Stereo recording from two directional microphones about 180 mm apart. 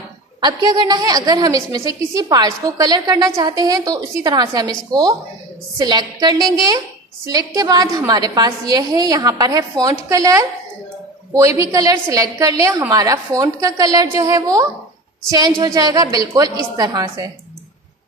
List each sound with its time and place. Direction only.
0.4 s a woman's voice: 25° right (ahead or behind)